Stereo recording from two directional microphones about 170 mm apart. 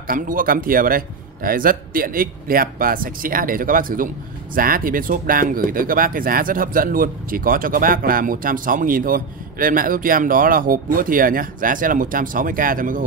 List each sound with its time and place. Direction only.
0.0 s speech: 55° right (ahead or behind)